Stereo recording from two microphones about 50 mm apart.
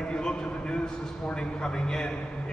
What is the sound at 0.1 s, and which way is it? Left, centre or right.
A man's voice, centre.